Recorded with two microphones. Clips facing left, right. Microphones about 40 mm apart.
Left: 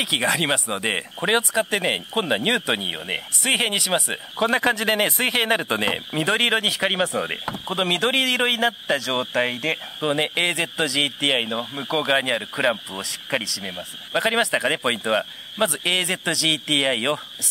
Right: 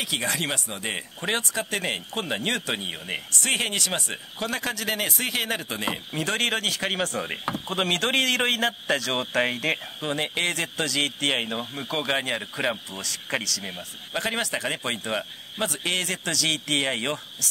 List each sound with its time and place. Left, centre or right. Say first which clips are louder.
0.0 s a man's voice: left 6 dB; left
1.5 s a man's voice: left 6 dB; centre
3.4 s a man's voice: left 5 dB; centre
4.4 s speech: left 9 dB; left
6.1 s a man's voice: left 5 dB; left; by 9.8 s centre
9.9 s a man's voice: left 5 dB; left; by 13.8 s centre
14.1 s a man's voice: left 7 dB; left